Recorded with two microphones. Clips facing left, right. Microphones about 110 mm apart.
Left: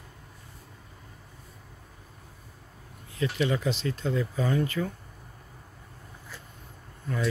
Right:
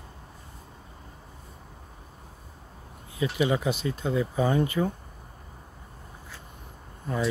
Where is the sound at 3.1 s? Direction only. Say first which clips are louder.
Right 2 dB; 10° right (ahead or behind).